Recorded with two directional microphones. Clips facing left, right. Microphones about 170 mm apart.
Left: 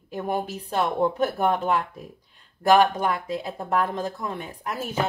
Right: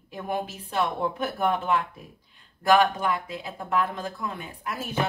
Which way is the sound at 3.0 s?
40° left (ahead or behind).